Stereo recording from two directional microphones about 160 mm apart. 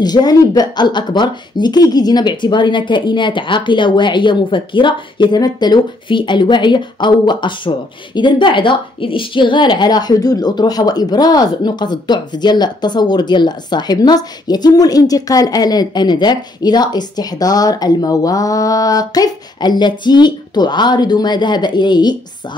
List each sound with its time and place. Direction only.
0.0 s a woman's voice: 25° left (ahead or behind)